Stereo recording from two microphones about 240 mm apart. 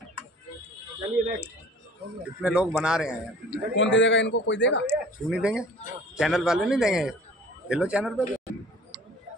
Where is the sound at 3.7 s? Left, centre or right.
Left.